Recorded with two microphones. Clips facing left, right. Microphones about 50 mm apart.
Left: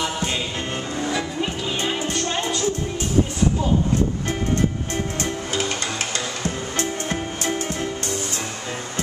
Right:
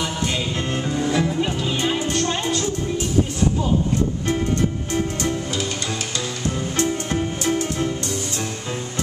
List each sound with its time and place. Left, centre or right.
6.4 s music: left